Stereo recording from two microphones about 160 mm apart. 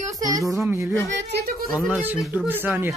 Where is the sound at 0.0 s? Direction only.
20° right (ahead or behind).